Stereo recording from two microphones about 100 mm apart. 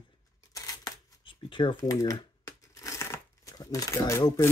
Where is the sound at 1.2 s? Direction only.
55° left (ahead or behind).